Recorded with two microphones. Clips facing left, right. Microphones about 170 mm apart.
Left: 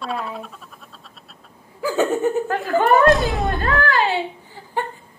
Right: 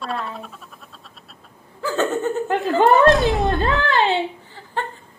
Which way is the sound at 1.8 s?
10° left (ahead or behind).